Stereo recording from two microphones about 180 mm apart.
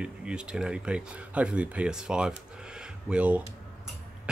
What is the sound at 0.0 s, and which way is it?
Speech, 5° right (ahead or behind).